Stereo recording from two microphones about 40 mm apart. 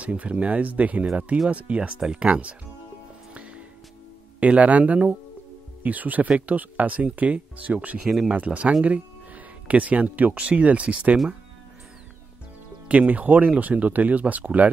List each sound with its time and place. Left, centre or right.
0.0 s speech: right
3.3 s music: right
4.4 s speech: right
8.0 s speech: centre
8.3 s speech: right
12.8 s speech: right